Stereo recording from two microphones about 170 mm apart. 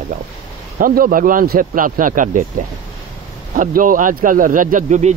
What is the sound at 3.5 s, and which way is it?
Speech, 55° right (ahead or behind).